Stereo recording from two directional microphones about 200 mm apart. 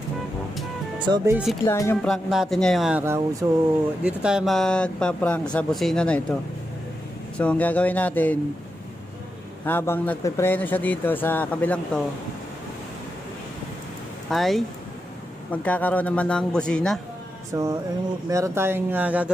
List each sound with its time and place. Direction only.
1.0 s speech: 20° right (ahead or behind)
1.3 s speech: centre (ahead or behind)
1.7 s speech: 10° left (ahead or behind)
2.0 s speech: centre (ahead or behind)
7.3 s speech: 5° left (ahead or behind)
9.7 s speech: 10° left (ahead or behind)
14.3 s speech: centre (ahead or behind)
17.5 s speech: 15° right (ahead or behind)